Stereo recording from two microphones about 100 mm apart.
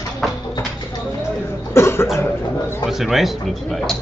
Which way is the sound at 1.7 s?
25° left (ahead or behind).